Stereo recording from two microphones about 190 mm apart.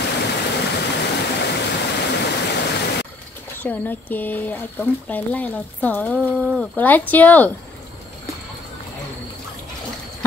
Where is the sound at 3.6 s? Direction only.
10° left (ahead or behind).